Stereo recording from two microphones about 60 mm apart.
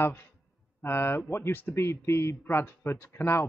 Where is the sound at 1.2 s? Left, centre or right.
Left.